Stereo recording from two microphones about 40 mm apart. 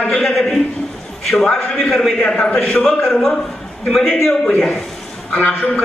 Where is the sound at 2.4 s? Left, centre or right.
Left.